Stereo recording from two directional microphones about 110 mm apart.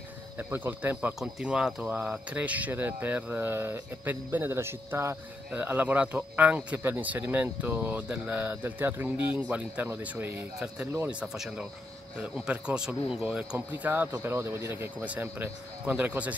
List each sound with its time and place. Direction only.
0.4 s speech: 20° right (ahead or behind)
1.2 s speech: 10° right (ahead or behind)